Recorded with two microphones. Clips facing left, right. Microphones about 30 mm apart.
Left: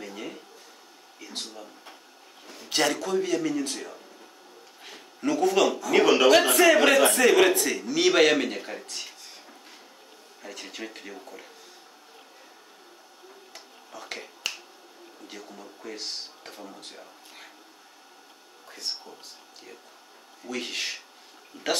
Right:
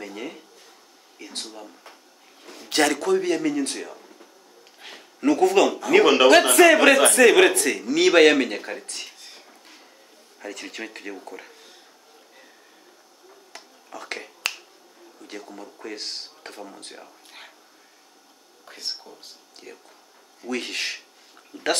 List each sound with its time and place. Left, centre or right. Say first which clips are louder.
2.4 s a sound: right 3 dB; centre
2.7 s a man's voice: right 5 dB; right
3.3 s speech: right 3 dB; right
3.9 s a sound: right 2 dB; centre
4.8 s a sound: right 3 dB; right
5.2 s a man's voice: right 5 dB; right
5.8 s speech: right 4 dB; right
6.3 s a man's voice: right 4 dB; right
10.4 s speech: right 5 dB; right
13.9 s speech: right 4 dB; right
15.9 s a man's voice: right 1 dB; right
20.4 s speech: right 4 dB; right